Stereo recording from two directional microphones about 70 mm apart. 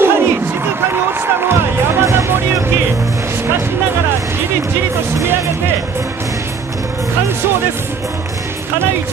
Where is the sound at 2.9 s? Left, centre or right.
Right.